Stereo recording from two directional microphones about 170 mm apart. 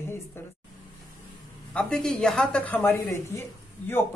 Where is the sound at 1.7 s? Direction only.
5° left (ahead or behind).